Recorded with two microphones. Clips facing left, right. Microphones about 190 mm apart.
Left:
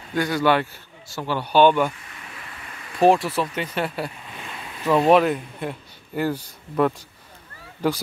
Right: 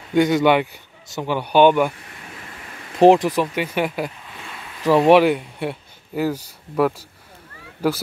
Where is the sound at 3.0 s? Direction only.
20° right (ahead or behind).